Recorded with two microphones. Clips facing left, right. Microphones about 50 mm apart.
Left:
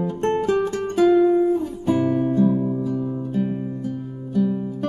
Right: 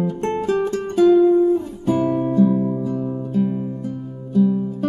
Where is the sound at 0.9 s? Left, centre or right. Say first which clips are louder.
Right 3 dB; centre.